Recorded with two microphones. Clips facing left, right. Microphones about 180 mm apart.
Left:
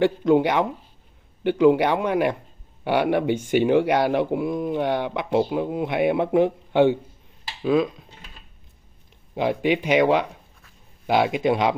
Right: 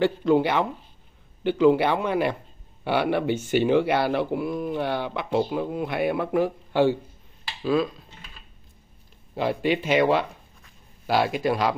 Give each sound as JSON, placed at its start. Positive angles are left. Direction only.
{"t": 0.0, "sound": "speech", "side_deg": 15}
{"t": 9.3, "sound": "speech", "side_deg": 15}